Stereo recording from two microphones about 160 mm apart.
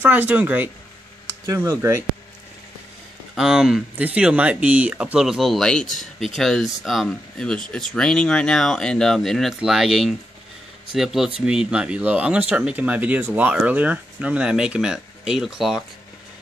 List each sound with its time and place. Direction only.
0.0 s speech: 10° right (ahead or behind)
3.3 s speech: 5° right (ahead or behind)